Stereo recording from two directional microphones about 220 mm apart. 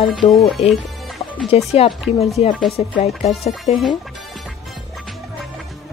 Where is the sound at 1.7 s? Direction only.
25° left (ahead or behind).